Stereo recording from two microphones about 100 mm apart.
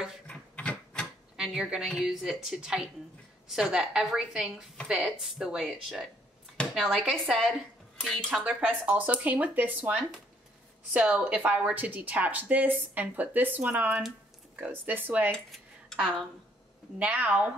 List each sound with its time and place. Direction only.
0.3 s a sound: 10° left (ahead or behind)
1.3 s a woman's voice: 5° right (ahead or behind)
8.0 s speech: 10° left (ahead or behind)
8.5 s a woman's voice: 15° right (ahead or behind)
15.3 s speech: 5° left (ahead or behind)
17.0 s a woman's voice: 15° right (ahead or behind)